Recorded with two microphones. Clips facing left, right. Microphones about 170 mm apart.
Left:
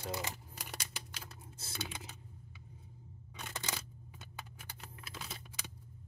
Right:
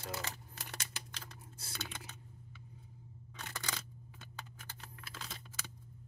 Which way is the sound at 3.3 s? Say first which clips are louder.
Left 1 dB; 20° left (ahead or behind).